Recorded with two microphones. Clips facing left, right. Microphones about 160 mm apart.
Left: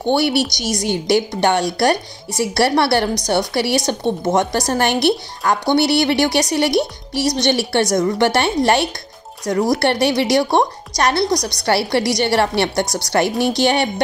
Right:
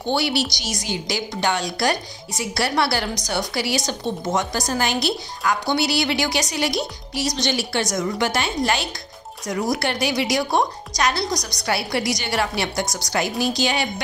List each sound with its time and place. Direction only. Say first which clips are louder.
0.0 s a woman's voice: left 5 dB; 55° left (ahead or behind)
9.5 s speech: left 6 dB; 40° left (ahead or behind)
9.8 s a woman's voice: left 6 dB; 65° left (ahead or behind)